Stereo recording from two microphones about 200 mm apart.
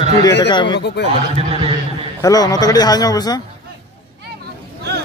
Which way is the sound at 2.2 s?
15° left (ahead or behind).